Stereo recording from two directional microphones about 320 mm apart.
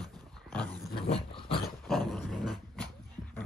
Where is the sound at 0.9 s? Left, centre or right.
Centre.